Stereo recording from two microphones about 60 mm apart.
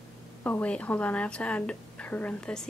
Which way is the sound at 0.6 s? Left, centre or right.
Left.